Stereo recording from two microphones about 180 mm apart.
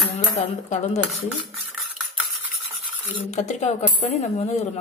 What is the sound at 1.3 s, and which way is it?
Cutlery, 5° right (ahead or behind).